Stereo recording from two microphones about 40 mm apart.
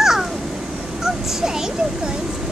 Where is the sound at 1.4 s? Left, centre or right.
Centre.